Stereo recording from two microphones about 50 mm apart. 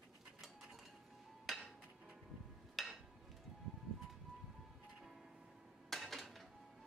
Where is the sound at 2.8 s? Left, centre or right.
Centre.